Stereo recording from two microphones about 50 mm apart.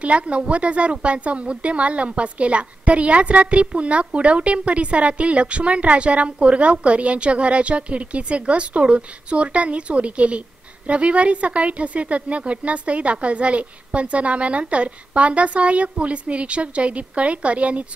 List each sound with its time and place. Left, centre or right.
0.0 s speech: right